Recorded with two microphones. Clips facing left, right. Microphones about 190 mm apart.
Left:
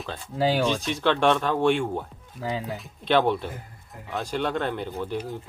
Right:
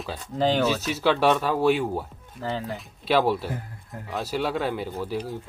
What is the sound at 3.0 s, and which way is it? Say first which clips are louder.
Speech: even; 5° right (ahead or behind).